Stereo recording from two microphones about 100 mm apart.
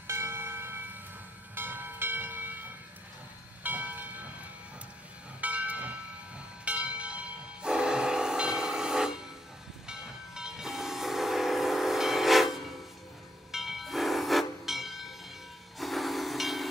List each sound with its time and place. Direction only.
0.0 s a sound: 25° right (ahead or behind)
1.5 s train: 20° right (ahead or behind)
3.6 s train: 15° right (ahead or behind)
13.5 s train: 5° right (ahead or behind)
15.8 s hiss: centre (ahead or behind)